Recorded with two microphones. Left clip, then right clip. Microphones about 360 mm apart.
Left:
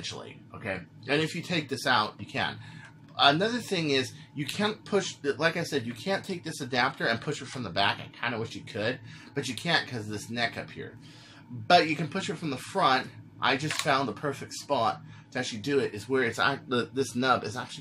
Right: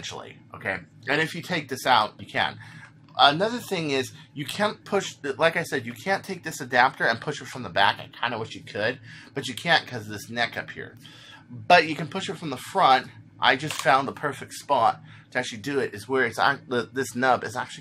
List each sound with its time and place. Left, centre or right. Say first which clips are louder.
1.0 s speech: right 3 dB; centre
11.7 s speech: right 4 dB; right